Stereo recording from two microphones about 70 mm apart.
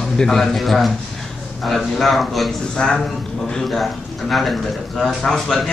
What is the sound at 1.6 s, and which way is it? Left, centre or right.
A man's voice, centre.